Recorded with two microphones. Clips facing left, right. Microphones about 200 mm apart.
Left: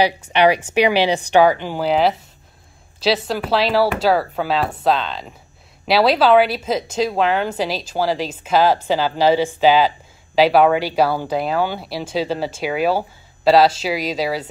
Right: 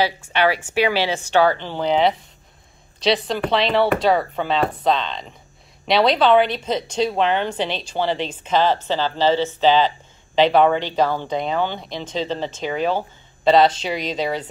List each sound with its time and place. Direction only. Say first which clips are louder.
0.0 s a woman's voice: left 4 dB; 15° left (ahead or behind)